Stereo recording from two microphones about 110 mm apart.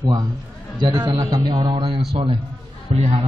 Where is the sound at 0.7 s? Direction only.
40° right (ahead or behind).